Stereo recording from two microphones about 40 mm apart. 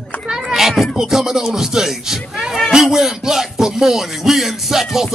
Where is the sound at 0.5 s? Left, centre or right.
Centre.